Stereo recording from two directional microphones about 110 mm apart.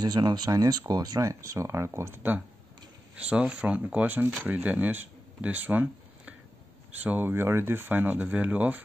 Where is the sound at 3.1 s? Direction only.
10° right (ahead or behind).